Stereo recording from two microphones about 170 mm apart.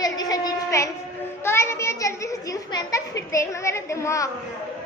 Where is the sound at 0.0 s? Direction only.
20° left (ahead or behind).